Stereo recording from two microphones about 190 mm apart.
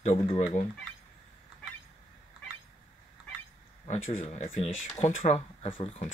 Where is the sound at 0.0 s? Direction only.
35° left (ahead or behind).